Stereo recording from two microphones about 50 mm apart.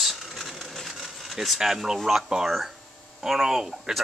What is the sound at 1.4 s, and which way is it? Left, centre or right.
Speech, centre.